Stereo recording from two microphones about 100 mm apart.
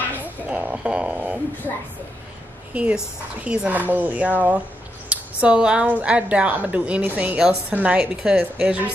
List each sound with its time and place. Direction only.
0.2 s speech: 15° right (ahead or behind)
2.7 s a woman's voice: 10° right (ahead or behind)